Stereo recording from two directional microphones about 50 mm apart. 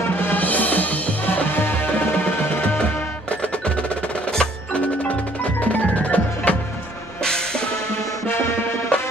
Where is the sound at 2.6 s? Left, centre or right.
Left.